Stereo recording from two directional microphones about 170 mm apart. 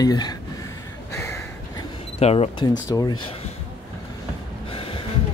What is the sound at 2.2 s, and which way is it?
Speech, 35° left (ahead or behind).